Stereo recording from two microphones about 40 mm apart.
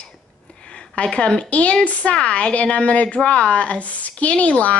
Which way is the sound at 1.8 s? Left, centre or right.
Left.